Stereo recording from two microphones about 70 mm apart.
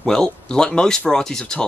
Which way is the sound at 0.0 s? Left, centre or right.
Centre.